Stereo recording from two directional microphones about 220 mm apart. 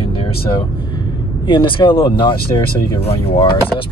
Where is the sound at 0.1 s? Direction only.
25° left (ahead or behind).